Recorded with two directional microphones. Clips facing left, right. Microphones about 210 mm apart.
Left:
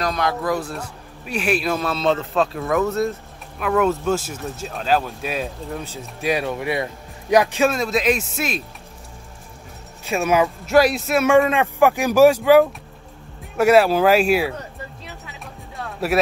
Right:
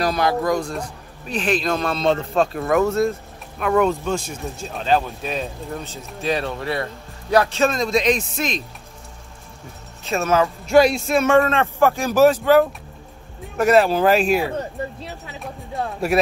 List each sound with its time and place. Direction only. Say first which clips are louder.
0.0 s a man's voice: right 3 dB; 5° right (ahead or behind)
2.1 s speech: right 1 dB; 45° right (ahead or behind)
2.9 s speech: right 2 dB; centre (ahead or behind)
10.0 s speech: even; 10° left (ahead or behind)